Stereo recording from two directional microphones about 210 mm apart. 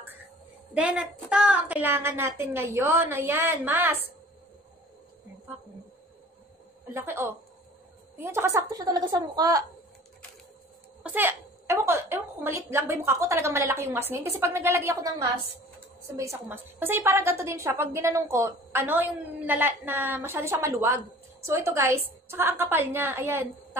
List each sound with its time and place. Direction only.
0.7 s a woman's voice: 5° right (ahead or behind)
6.9 s a woman's voice: 10° right (ahead or behind)
11.0 s a woman's voice: 10° right (ahead or behind)